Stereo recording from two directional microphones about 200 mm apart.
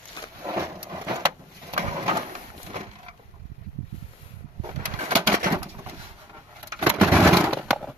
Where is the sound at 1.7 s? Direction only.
25° right (ahead or behind).